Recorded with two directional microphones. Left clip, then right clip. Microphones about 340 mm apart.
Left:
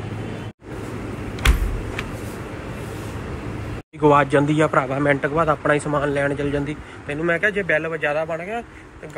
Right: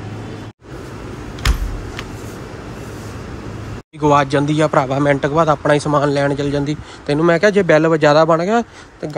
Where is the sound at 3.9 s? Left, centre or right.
Centre.